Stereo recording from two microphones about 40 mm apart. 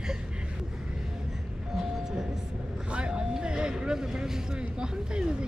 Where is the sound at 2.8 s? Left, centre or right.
Right.